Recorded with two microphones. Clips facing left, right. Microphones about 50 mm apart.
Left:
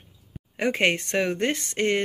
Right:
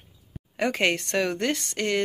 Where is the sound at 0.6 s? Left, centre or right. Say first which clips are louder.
Left 1 dB; left.